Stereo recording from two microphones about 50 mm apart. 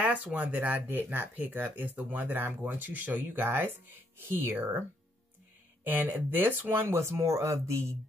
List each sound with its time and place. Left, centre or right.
0.0 s speech: right
5.9 s speech: right